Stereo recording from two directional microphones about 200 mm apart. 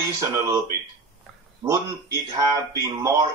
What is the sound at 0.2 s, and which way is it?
Speech, 20° right (ahead or behind).